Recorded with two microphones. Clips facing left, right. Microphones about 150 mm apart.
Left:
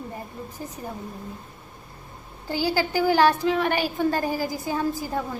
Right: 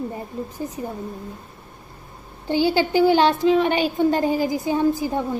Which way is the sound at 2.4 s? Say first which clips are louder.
Right 5 dB; 20° right (ahead or behind).